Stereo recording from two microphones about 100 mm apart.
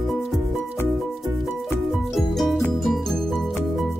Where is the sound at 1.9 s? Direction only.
Centre (ahead or behind).